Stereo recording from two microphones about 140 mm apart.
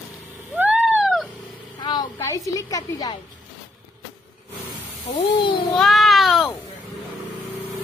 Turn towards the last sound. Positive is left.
turn(degrees=0)  # may be behind; listen again after turning